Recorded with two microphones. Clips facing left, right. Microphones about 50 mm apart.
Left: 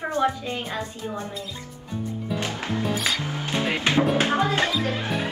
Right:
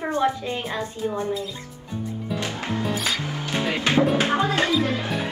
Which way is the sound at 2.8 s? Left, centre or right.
Centre.